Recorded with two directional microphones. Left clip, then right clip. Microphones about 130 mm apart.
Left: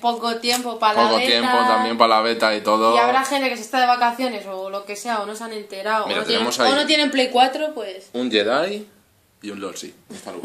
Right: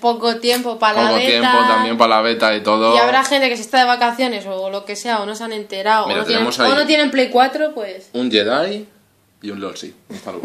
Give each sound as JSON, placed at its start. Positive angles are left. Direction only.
{"t": 0.0, "sound": "a woman's voice", "side_deg": -45}
{"t": 1.0, "sound": "speech", "side_deg": 5}
{"t": 3.1, "sound": "a woman's voice", "side_deg": -45}
{"t": 6.0, "sound": "speech", "side_deg": 0}
{"t": 6.8, "sound": "speech", "side_deg": -30}
{"t": 8.1, "sound": "speech", "side_deg": 0}